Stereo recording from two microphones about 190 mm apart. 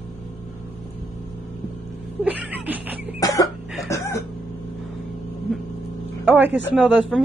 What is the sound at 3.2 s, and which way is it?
Cough, 20° left (ahead or behind).